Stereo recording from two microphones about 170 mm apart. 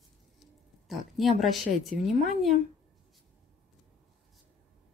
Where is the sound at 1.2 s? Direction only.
Centre (ahead or behind).